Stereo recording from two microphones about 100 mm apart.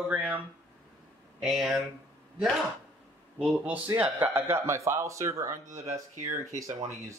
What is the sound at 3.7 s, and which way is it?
Speech, 20° right (ahead or behind).